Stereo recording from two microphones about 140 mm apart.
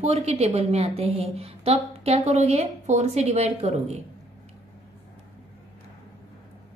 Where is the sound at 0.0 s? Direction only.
50° right (ahead or behind).